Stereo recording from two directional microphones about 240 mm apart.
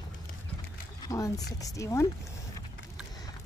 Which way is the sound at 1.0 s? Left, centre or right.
Centre.